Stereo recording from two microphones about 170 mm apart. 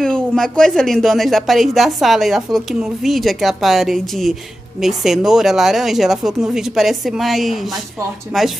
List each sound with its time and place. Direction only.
0.0 s speech: 5° left (ahead or behind)